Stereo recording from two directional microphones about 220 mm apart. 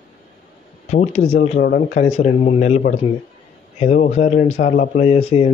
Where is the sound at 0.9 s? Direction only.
30° left (ahead or behind).